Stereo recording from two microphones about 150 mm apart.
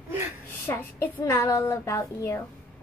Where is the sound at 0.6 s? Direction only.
15° left (ahead or behind).